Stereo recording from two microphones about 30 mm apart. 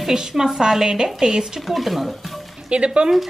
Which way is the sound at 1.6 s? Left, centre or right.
Centre.